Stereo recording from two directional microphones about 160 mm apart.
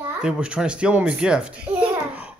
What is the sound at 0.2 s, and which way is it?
A child's voice, 5° right (ahead or behind).